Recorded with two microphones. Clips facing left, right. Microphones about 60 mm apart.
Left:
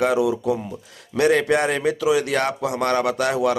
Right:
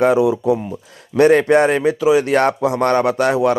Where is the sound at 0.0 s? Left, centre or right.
Right.